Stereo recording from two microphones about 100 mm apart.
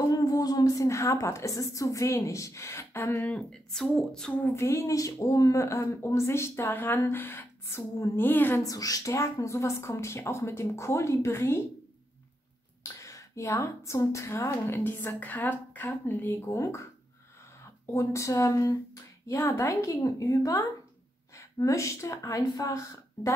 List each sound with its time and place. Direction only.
0.0 s a woman's voice: 40° left (ahead or behind); by 4.5 s 10° left (ahead or behind)
4.5 s a woman's voice: 30° left (ahead or behind)
8.6 s a woman's voice: 35° left (ahead or behind)
12.8 s a woman's voice: 30° left (ahead or behind)
17.9 s a woman's voice: 30° left (ahead or behind)